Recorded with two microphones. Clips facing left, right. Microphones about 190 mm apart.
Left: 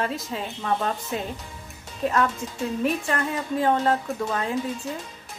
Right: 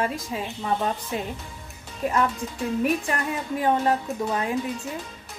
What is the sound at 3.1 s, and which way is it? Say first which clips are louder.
A woman's voice: left 1 dB; 15° right (ahead or behind).